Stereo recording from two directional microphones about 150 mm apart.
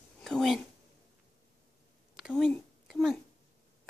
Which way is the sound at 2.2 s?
Centre (ahead or behind).